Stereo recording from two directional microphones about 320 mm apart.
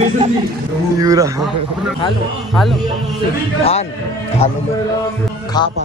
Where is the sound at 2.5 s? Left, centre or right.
Centre.